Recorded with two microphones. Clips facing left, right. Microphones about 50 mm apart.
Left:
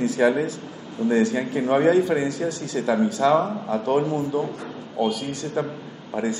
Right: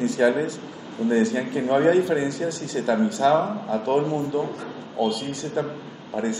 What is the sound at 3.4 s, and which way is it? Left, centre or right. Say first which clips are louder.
Speech: left 1 dB; centre.